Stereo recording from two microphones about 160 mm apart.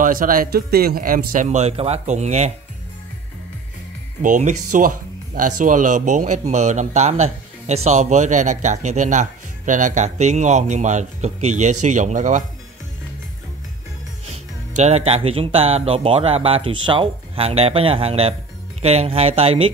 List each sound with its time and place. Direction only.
0.0 s speech: 60° right (ahead or behind); by 2.5 s 45° right (ahead or behind)
4.2 s speech: 50° right (ahead or behind)
14.8 s speech: 45° right (ahead or behind)